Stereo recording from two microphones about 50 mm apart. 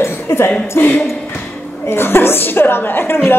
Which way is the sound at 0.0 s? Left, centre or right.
Left.